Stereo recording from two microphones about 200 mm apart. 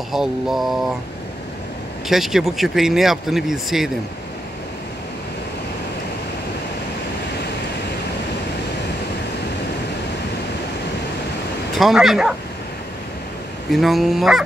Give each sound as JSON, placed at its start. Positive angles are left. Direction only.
{"t": 0.1, "sound": "speech", "side_deg": 0}
{"t": 2.0, "sound": "speech", "side_deg": 0}
{"t": 11.7, "sound": "speech", "side_deg": 0}
{"t": 13.7, "sound": "speech", "side_deg": 0}